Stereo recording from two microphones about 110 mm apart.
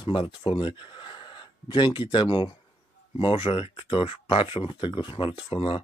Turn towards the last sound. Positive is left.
turn(degrees=50)  # may be behind; listen again after turning